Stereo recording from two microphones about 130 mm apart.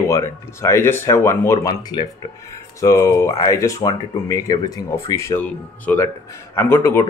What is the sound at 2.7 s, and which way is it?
Speech, 25° left (ahead or behind).